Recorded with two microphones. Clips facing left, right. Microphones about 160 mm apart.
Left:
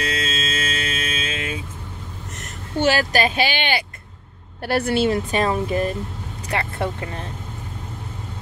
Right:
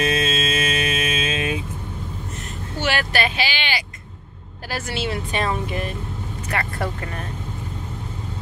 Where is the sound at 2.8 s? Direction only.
40° left (ahead or behind).